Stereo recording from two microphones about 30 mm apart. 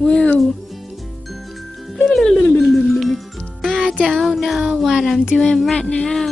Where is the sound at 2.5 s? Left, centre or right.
Centre.